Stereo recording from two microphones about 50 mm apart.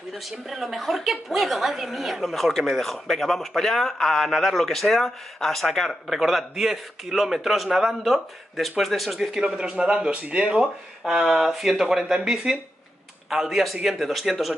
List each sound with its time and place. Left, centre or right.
0.1 s a woman's voice: centre
6.0 s a woman's voice: centre
9.3 s a woman's voice: centre